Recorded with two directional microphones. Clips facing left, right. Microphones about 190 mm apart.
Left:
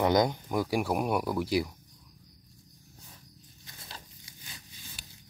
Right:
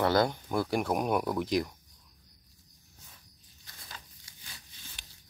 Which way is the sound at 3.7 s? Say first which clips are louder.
Left 2 dB; 25° left (ahead or behind).